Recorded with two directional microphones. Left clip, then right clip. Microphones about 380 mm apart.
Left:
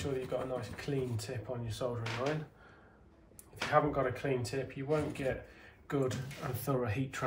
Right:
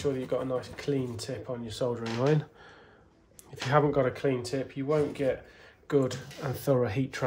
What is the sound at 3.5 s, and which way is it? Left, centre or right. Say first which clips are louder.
Speech: right 5 dB; right.